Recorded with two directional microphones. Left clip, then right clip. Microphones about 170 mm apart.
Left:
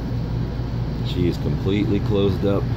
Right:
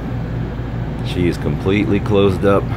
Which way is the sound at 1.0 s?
Centre (ahead or behind).